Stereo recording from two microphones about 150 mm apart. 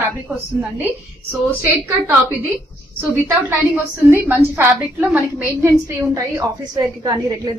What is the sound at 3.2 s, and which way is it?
A woman's voice, 15° right (ahead or behind).